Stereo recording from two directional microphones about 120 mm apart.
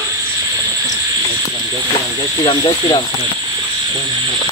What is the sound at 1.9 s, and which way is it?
Speech, 45° left (ahead or behind).